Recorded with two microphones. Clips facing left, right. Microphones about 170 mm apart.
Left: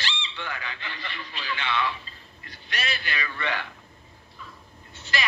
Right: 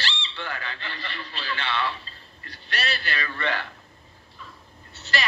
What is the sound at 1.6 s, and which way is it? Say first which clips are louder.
Speech: left 1 dB; 35° right (ahead or behind).